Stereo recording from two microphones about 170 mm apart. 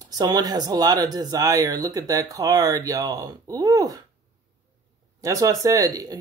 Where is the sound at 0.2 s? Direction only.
25° right (ahead or behind).